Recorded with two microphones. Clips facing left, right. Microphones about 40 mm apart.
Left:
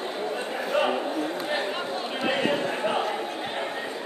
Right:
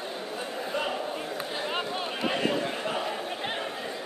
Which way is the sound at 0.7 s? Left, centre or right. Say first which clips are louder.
Left 7 dB; left.